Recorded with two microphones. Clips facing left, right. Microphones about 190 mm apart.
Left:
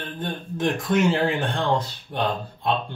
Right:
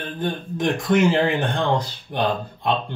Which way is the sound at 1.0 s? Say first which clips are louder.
Right 2 dB; 15° right (ahead or behind).